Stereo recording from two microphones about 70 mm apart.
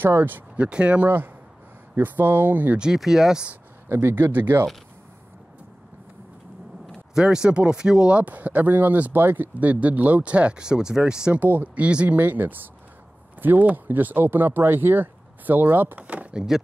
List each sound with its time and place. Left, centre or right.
0.0 s speech: right
0.6 s speech: centre
1.0 s speech: right
2.8 s speech: centre
3.9 s speech: right
7.2 s speech: centre
11.3 s speech: right